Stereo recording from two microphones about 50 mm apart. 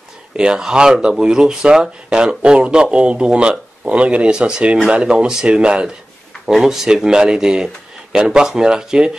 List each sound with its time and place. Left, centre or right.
0.4 s speech: centre
6.4 s speech: centre